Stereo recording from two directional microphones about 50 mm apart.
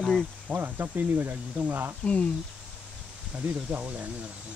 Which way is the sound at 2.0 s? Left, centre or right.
Left.